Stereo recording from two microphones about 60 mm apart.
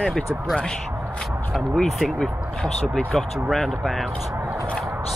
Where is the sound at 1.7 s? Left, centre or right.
Centre.